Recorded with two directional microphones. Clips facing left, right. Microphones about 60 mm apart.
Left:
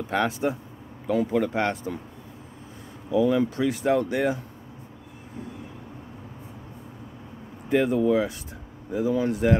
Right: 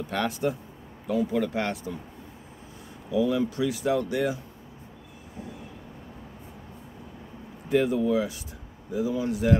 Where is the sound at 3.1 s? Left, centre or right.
Left.